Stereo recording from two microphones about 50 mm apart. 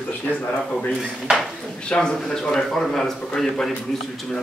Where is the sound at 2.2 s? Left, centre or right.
Centre.